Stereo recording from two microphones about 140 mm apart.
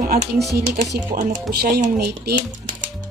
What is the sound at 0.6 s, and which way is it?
Speech, 70° right (ahead or behind).